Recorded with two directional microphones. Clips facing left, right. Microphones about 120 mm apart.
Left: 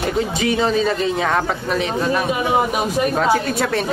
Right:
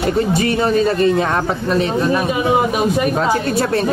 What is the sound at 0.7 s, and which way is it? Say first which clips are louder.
Speech: right 4 dB; 55° right (ahead or behind).